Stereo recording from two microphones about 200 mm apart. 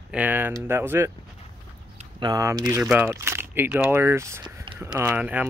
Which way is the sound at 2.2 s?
20° right (ahead or behind).